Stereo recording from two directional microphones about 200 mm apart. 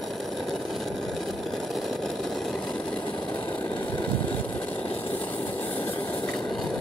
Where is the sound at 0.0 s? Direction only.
Centre (ahead or behind).